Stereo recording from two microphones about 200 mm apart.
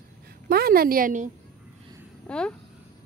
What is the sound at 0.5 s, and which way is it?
Speech, 50° right (ahead or behind).